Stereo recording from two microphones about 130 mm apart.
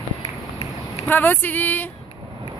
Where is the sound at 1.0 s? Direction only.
15° left (ahead or behind).